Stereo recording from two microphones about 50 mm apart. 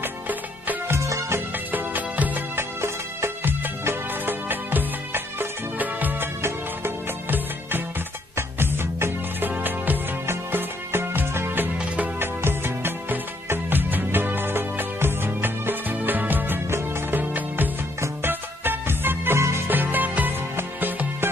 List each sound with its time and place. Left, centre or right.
0.0 s music: right
0.8 s music: right
1.7 s music: right
2.5 s music: right
3.6 s music: right
7.2 s music: right
8.4 s music: right
9.6 s music: right
10.2 s music: right
19.7 s music: right